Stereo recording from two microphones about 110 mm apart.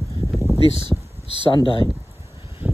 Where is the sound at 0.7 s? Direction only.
50° right (ahead or behind).